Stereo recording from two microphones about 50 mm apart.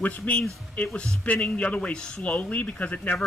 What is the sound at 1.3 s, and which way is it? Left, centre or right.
A man's voice, centre.